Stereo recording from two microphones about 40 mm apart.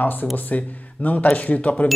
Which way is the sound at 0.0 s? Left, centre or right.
Left.